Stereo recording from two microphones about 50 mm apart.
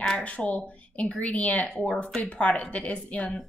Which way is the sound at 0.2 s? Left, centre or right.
Left.